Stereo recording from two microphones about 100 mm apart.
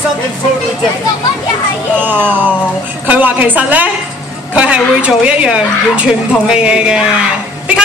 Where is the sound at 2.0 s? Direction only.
20° right (ahead or behind).